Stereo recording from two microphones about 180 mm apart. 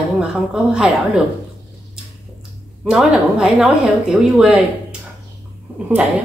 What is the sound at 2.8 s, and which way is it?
A woman's voice, 5° right (ahead or behind).